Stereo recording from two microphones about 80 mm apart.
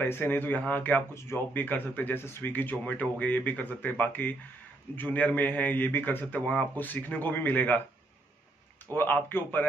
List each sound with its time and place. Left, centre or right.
0.0 s speech: left
1.1 s speech: left
8.9 s speech: left